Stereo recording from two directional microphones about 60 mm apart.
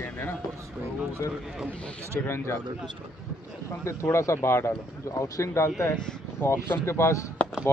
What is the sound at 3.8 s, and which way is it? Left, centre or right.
Speech, left.